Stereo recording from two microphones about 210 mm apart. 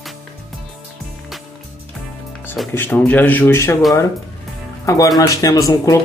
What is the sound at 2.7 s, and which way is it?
Speech, 10° left (ahead or behind).